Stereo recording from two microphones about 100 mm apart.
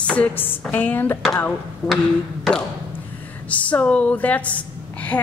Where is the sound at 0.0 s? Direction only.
15° left (ahead or behind).